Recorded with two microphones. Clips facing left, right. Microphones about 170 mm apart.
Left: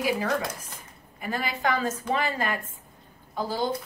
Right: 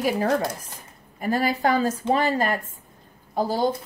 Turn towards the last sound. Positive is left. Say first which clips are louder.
# right 5 dB
turn(degrees=-40)  # may be behind; listen again after turning